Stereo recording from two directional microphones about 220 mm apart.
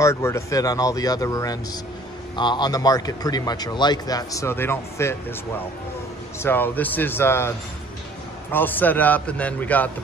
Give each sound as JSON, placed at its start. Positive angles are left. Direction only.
{"t": 0.0, "sound": "a man's voice", "side_deg": 10}
{"t": 6.4, "sound": "a man's voice", "side_deg": 10}